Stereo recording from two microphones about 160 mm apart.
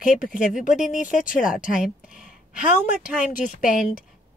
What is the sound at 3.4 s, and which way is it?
Speech, 60° left (ahead or behind).